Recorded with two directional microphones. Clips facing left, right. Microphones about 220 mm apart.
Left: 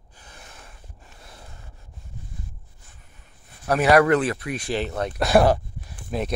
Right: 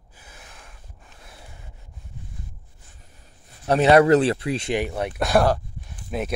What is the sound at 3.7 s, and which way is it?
Speech, 25° right (ahead or behind).